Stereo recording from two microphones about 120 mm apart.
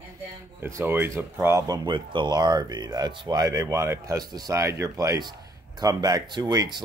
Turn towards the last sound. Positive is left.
turn(degrees=-35)  # may be behind; listen again after turning